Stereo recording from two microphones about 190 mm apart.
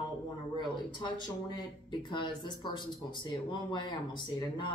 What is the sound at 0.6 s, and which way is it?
Speech, 25° left (ahead or behind).